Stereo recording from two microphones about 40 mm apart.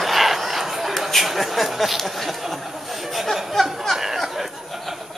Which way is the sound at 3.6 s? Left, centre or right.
Centre.